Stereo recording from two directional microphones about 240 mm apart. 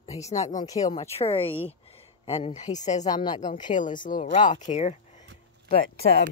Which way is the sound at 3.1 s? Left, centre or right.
Centre.